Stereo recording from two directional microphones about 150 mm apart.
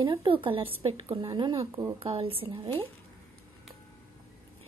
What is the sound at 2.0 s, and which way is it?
Speech, 40° right (ahead or behind).